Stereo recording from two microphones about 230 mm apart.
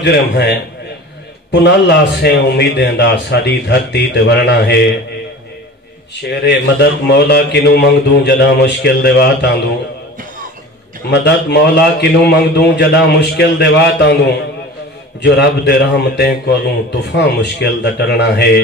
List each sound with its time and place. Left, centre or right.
0.0 s a man's voice: left
6.2 s a man's voice: left
11.1 s a man's voice: left